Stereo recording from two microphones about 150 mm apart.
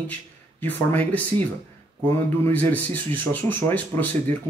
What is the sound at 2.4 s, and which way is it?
Speech, 10° left (ahead or behind).